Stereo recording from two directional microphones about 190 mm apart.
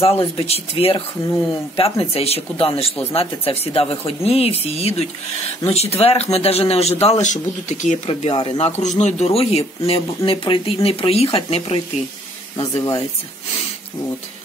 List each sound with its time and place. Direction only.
0.0 s a man's voice: 30° left (ahead or behind)